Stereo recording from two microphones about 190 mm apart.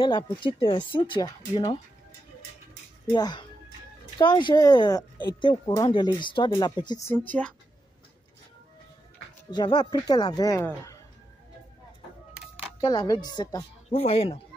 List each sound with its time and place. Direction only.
0.0 s speech: 25° left (ahead or behind)
3.1 s speech: 20° left (ahead or behind)
9.5 s speech: 20° left (ahead or behind)
12.8 s speech: 20° left (ahead or behind)
13.8 s speech: 30° left (ahead or behind)